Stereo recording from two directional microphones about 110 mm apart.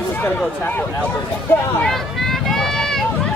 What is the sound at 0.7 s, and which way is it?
Speech, 20° left (ahead or behind).